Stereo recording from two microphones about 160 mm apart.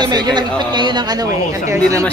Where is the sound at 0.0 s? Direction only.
25° right (ahead or behind).